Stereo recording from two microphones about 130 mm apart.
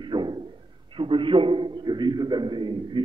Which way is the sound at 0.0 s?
35° right (ahead or behind).